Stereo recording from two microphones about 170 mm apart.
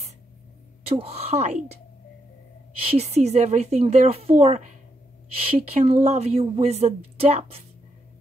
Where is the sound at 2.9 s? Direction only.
40° right (ahead or behind).